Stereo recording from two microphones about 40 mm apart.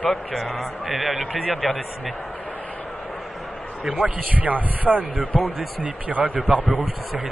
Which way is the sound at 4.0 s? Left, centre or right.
Right.